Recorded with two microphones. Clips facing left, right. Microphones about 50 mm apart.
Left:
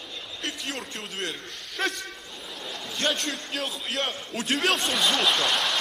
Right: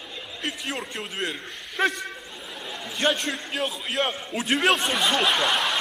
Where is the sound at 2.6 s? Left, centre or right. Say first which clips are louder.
Right 3 dB; centre.